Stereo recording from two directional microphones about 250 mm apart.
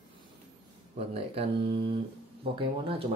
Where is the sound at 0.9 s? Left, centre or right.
Right.